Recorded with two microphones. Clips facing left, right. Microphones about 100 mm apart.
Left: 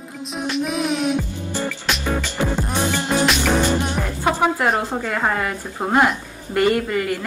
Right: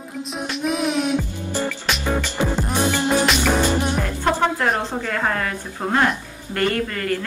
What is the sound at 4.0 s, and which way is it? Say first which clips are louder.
A woman's voice: even; 10° left (ahead or behind).